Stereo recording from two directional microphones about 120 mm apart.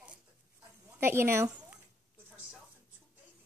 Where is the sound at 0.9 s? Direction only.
20° right (ahead or behind).